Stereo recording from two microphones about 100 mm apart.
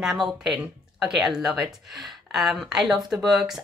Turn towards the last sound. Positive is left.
turn(degrees=0)  # may be behind; listen again after turning